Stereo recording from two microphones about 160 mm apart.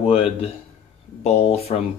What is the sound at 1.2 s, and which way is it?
Speech, 40° left (ahead or behind).